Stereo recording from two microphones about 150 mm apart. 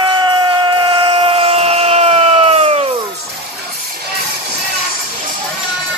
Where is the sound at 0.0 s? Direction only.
30° right (ahead or behind).